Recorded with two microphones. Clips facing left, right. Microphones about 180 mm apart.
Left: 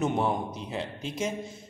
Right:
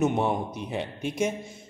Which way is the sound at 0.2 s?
20° right (ahead or behind).